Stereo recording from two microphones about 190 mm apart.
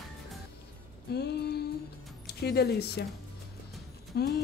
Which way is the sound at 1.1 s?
60° left (ahead or behind).